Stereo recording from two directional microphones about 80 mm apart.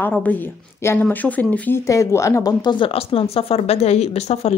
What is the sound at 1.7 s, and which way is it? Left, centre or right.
Speech, left.